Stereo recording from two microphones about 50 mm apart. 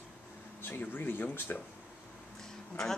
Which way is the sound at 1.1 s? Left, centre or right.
Left.